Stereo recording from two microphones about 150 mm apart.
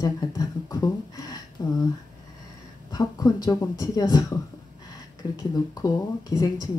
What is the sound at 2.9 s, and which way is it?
Speech, 25° left (ahead or behind).